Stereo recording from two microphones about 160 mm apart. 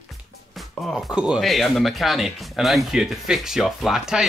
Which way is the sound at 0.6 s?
Centre (ahead or behind).